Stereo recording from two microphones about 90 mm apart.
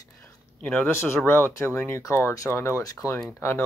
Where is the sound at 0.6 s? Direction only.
10° left (ahead or behind).